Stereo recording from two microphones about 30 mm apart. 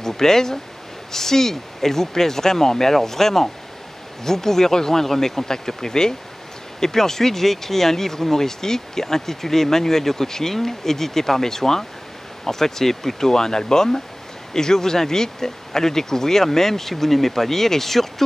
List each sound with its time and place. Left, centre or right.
0.0 s speech: centre